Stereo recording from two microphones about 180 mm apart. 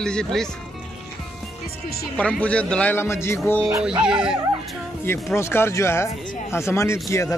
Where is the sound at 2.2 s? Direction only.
5° left (ahead or behind).